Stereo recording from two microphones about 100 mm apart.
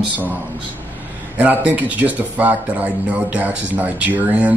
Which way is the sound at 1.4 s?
15° right (ahead or behind).